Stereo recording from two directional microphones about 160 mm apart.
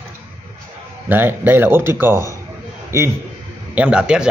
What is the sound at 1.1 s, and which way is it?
A man's voice, 15° right (ahead or behind).